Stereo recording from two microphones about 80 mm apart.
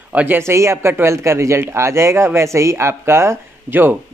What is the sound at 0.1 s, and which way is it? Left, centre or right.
Speech, right.